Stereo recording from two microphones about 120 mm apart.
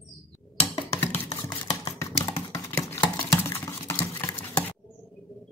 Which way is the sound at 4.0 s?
20° left (ahead or behind).